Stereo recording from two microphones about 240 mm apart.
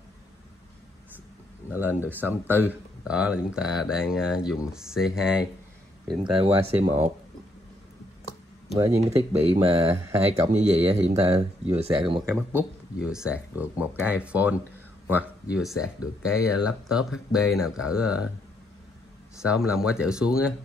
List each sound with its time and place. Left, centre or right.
1.7 s speech: centre
6.2 s speech: right
8.9 s speech: right; by 18.3 s centre
19.4 s speech: centre